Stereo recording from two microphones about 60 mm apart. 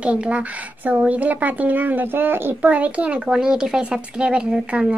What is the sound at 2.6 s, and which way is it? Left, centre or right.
Speech, right.